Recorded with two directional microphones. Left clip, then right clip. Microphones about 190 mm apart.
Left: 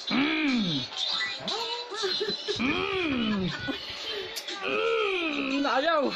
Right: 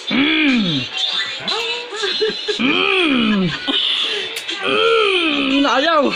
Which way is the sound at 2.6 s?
25° right (ahead or behind).